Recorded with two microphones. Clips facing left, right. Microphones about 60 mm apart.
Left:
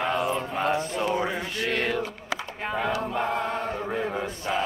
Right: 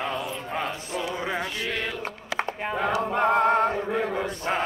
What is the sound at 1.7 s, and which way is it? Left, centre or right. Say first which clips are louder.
Mantra: left 4 dB; left.